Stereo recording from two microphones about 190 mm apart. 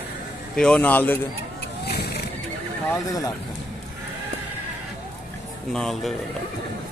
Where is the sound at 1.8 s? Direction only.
60° left (ahead or behind).